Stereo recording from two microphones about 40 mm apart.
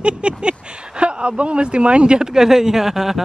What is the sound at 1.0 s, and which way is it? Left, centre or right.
Speech, right.